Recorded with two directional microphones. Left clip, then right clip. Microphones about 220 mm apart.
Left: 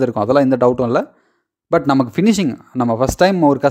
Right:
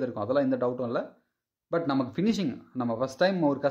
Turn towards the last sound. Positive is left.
turn(degrees=45)  # may be behind; listen again after turning